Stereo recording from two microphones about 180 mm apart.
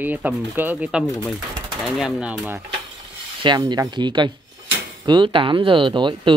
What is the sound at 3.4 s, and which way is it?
Speech, 25° right (ahead or behind).